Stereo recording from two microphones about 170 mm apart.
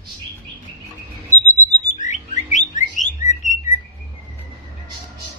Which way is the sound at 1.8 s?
45° left (ahead or behind).